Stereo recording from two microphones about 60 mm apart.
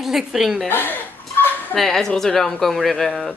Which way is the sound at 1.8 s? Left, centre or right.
Centre.